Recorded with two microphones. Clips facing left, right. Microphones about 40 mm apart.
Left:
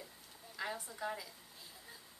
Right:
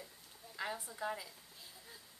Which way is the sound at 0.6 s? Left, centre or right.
Centre.